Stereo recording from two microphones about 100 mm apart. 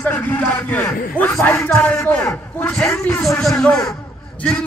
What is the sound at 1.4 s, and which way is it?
Speech, 30° left (ahead or behind).